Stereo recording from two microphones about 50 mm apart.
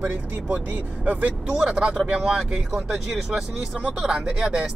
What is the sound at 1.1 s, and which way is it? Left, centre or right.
Speech, right.